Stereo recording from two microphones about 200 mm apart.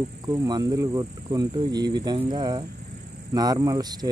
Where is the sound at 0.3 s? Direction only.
20° right (ahead or behind).